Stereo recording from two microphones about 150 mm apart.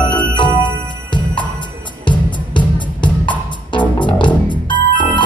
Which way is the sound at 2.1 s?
30° left (ahead or behind).